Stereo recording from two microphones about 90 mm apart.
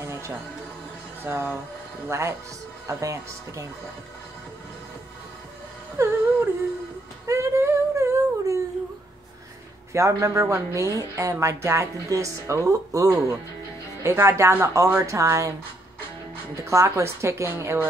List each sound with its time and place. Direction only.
0.0 s music: 30° right (ahead or behind)
1.2 s a woman's voice: 25° right (ahead or behind)
6.0 s a woman's voice: 35° right (ahead or behind)
7.2 s humming: 30° right (ahead or behind)
9.9 s a woman's voice: 35° right (ahead or behind)
16.5 s a woman's voice: 35° right (ahead or behind)